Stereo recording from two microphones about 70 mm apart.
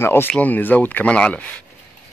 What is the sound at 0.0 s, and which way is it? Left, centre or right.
Speech, left.